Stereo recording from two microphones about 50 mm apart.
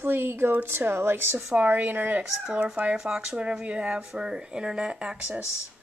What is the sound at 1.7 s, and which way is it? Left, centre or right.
Speech, right.